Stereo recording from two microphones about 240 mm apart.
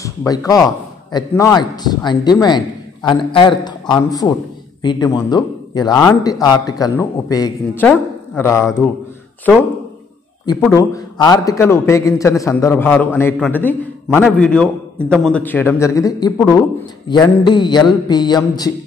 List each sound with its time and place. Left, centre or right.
0.0 s a man's voice: centre
10.6 s a man's voice: centre